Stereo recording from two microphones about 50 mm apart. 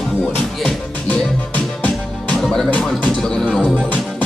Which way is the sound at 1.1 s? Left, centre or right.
Left.